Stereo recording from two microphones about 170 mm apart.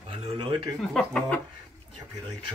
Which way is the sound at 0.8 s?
5° left (ahead or behind).